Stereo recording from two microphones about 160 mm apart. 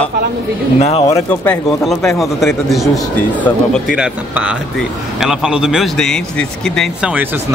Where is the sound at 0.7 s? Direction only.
40° left (ahead or behind).